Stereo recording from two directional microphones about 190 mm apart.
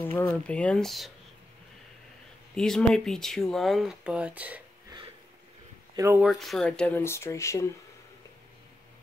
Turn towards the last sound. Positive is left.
turn(degrees=15)  # may be behind; listen again after turning